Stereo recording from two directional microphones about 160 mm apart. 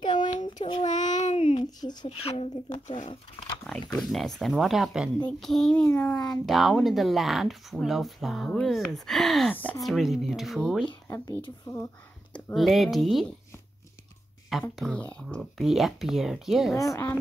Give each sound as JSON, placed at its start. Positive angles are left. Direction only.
{"t": 0.0, "sound": "a sound", "side_deg": 30}
{"t": 0.9, "sound": "a sound", "side_deg": 50}
{"t": 1.4, "sound": "a sound", "side_deg": 30}
{"t": 2.0, "sound": "speech", "side_deg": 40}
{"t": 3.6, "sound": "speech", "side_deg": 5}
{"t": 9.8, "sound": "speech", "side_deg": 0}
{"t": 11.1, "sound": "speech", "side_deg": 15}
{"t": 12.3, "sound": "speech", "side_deg": 5}
{"t": 14.5, "sound": "speech", "side_deg": 0}
{"t": 16.7, "sound": "speech", "side_deg": 20}